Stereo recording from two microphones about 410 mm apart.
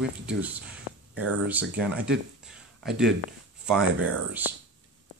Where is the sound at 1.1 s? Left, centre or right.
Right.